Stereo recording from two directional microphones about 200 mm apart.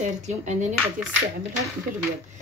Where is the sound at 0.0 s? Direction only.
35° right (ahead or behind).